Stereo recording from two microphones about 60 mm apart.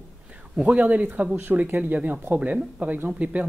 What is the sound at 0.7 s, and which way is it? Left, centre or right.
Speech, right.